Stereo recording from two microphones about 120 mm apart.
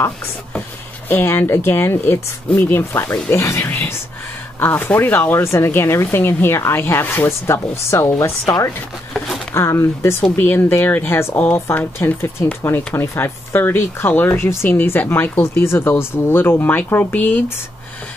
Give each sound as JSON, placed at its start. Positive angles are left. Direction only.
{"t": 1.0, "sound": "speech", "side_deg": 15}